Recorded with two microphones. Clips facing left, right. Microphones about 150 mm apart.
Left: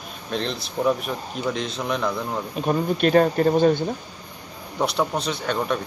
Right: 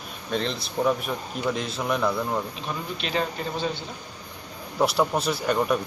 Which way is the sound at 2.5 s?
50° left (ahead or behind).